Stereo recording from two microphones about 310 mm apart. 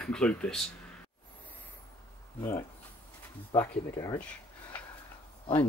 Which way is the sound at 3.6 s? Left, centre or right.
Centre.